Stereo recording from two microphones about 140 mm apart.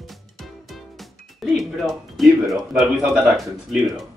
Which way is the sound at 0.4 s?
Centre (ahead or behind).